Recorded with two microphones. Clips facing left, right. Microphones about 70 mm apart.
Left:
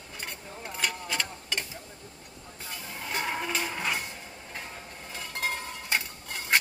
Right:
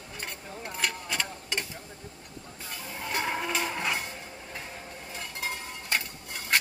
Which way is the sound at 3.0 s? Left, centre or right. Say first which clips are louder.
Right 1 dB; centre.